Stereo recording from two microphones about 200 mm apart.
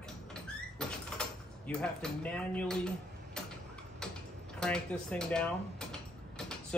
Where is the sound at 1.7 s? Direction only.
5° left (ahead or behind).